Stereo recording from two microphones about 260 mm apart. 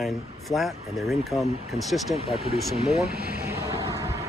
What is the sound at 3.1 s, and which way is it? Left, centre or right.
Speech, right.